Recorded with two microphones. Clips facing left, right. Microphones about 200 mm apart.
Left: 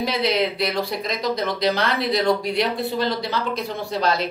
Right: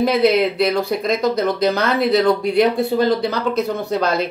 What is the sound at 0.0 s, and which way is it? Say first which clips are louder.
Speech: right 7 dB; 55° right (ahead or behind).